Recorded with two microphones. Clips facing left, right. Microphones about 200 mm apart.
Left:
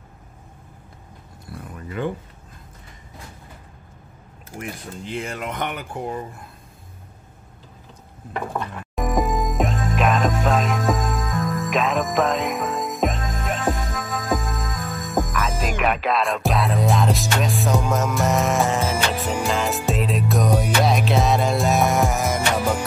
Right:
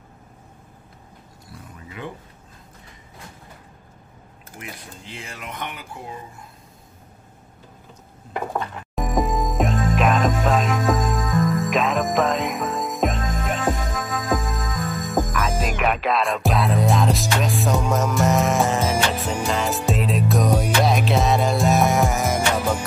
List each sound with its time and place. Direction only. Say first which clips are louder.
1.5 s a sound: left 7 dB; 50° left (ahead or behind)
4.6 s speech: left 6 dB; 50° left (ahead or behind)
8.5 s music: even; centre (ahead or behind)